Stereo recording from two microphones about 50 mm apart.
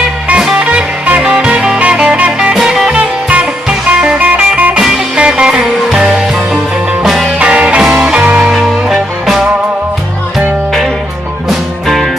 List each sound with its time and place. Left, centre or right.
0.4 s music: centre
2.0 s music: right
2.5 s music: centre
2.9 s music: right
5.1 s music: right
7.3 s music: right
7.8 s music: centre
11.4 s music: centre